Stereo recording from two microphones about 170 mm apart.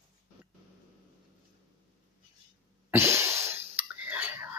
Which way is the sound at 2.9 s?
15° right (ahead or behind).